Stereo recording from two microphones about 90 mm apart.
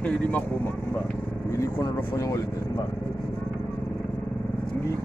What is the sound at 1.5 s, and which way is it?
Speech, 35° left (ahead or behind).